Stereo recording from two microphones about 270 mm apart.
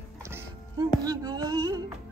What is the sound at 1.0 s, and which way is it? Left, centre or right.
Speech, centre.